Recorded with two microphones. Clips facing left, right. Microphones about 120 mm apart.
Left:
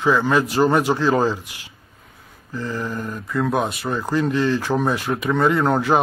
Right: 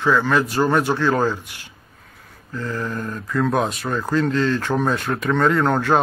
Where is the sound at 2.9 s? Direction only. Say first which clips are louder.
Right 1 dB; 5° left (ahead or behind).